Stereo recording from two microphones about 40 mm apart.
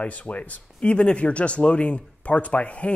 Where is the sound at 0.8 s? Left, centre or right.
Left.